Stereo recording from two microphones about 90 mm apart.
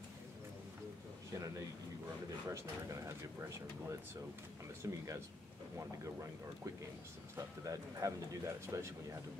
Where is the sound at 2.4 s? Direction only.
35° right (ahead or behind).